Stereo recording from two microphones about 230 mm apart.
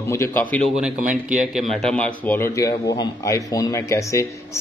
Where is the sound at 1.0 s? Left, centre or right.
Right.